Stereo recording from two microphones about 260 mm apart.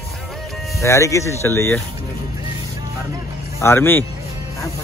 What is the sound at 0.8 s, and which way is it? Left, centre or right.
Speech, centre.